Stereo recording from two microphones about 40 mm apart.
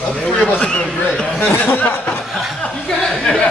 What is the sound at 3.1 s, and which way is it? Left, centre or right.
Speech, centre.